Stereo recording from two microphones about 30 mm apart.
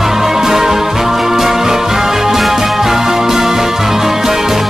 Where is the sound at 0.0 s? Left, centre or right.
Centre.